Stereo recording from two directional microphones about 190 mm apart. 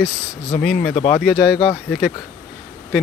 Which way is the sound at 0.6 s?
5° left (ahead or behind).